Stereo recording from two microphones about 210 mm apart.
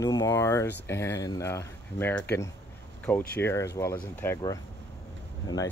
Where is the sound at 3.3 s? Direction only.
10° left (ahead or behind).